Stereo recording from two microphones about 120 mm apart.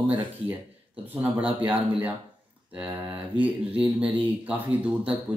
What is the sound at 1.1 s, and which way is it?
Speech, 15° right (ahead or behind).